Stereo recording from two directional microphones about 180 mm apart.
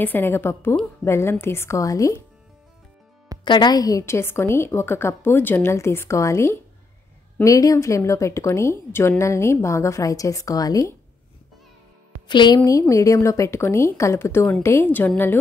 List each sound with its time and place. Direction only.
0.0 s a woman's voice: 10° left (ahead or behind)
3.4 s a woman's voice: 25° left (ahead or behind)
12.3 s a woman's voice: 25° left (ahead or behind)